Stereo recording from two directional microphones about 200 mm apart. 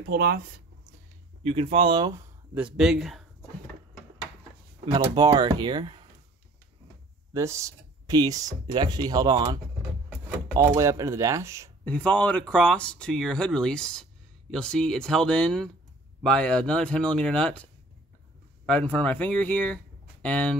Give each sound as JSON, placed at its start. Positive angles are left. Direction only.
{"t": 0.1, "sound": "speech", "side_deg": -50}
{"t": 1.4, "sound": "speech", "side_deg": -30}
{"t": 2.6, "sound": "speech", "side_deg": 0}
{"t": 4.9, "sound": "speech", "side_deg": -20}
{"t": 7.3, "sound": "speech", "side_deg": -15}
{"t": 11.8, "sound": "speech", "side_deg": 5}
{"t": 18.7, "sound": "speech", "side_deg": 5}